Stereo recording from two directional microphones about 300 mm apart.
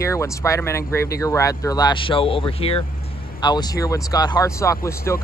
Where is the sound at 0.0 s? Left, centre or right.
Centre.